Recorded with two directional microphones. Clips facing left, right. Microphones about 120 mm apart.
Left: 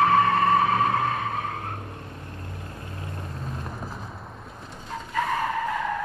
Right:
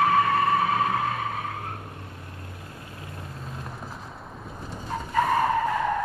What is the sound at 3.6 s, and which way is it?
Clip-clop, centre (ahead or behind).